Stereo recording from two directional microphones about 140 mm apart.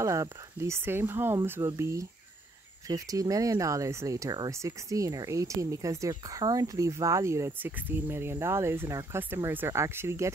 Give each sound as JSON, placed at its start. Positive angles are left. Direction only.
{"t": 0.0, "sound": "speech", "side_deg": -20}